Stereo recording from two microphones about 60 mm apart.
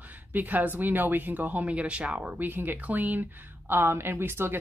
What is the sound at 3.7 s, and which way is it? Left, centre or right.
Speech, right.